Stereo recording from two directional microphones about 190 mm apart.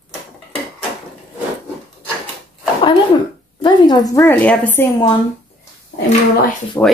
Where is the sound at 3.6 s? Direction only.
20° left (ahead or behind).